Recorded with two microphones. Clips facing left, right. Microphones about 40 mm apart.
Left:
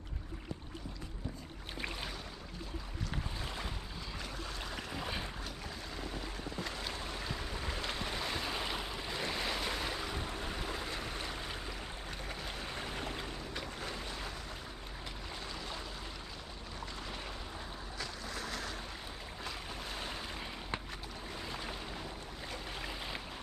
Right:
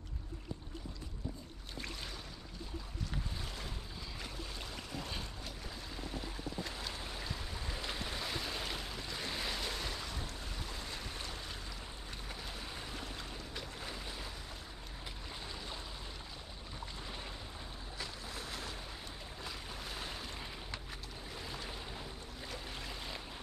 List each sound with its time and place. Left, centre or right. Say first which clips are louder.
1.8 s a sound: left 4 dB; left
3.1 s boat: left 4 dB; left
4.9 s boat: left 3 dB; left
6.8 s a sound: left 3 dB; centre
7.6 s boat: left 3 dB; centre
8.0 s waves: left 3 dB; centre
10.1 s boat: left 5 dB; left
12.4 s a sound: left 5 dB; left
13.6 s boat: left 3 dB; centre
17.9 s boat: left 2 dB; centre
19.4 s boat: left 3 dB; centre
21.5 s boat: left 3 dB; centre
22.8 s boat: left 3 dB; centre